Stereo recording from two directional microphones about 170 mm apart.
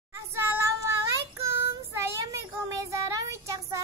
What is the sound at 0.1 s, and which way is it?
Child singing, 15° right (ahead or behind).